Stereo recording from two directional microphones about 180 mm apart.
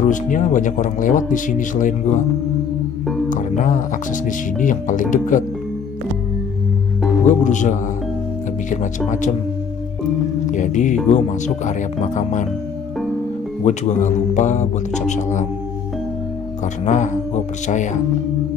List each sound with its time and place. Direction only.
0.0 s speech: 45° left (ahead or behind)
3.3 s speech: 45° left (ahead or behind)
7.2 s speech: 45° left (ahead or behind)
10.5 s speech: 45° left (ahead or behind)
13.7 s speech: 40° left (ahead or behind)
16.8 s speech: 40° left (ahead or behind)